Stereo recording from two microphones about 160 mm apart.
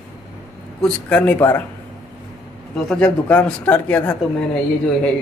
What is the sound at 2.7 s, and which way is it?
Speech, 5° left (ahead or behind).